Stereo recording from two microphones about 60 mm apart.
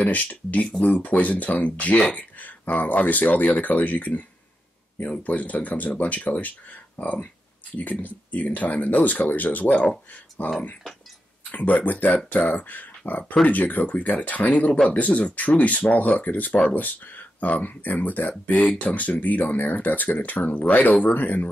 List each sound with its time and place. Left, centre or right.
0.0 s speech: left